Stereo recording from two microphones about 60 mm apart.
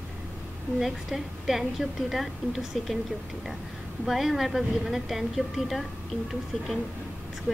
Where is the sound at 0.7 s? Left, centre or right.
Centre.